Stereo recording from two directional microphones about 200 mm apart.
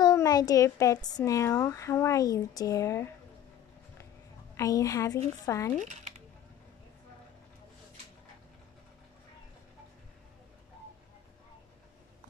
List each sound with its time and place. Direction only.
0.0 s speech: 20° left (ahead or behind)
4.6 s speech: 15° left (ahead or behind)